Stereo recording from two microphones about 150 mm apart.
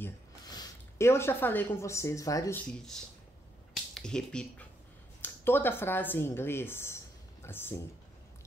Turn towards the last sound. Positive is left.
turn(degrees=15)  # may be behind; listen again after turning